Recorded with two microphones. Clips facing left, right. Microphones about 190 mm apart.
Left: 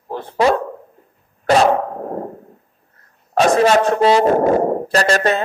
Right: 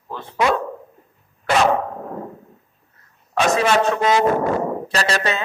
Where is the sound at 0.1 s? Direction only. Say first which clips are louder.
Left 6 dB; 55° left (ahead or behind).